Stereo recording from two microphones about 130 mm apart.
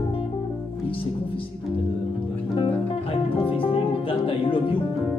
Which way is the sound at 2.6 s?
45° left (ahead or behind).